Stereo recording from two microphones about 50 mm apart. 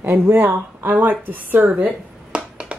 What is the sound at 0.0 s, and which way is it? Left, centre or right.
Speech, right.